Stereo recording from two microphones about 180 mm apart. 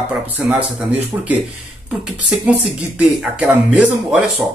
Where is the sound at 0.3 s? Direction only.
5° right (ahead or behind).